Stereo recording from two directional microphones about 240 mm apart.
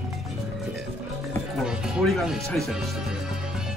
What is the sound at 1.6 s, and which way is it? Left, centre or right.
Speech, centre.